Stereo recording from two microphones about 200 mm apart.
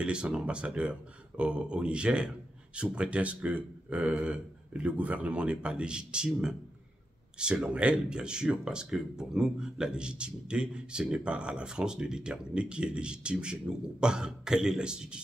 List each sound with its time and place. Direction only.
0.0 s speech: 5° right (ahead or behind)